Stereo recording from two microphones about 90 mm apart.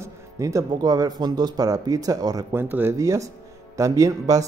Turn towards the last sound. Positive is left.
turn(degrees=-40)  # may be behind; listen again after turning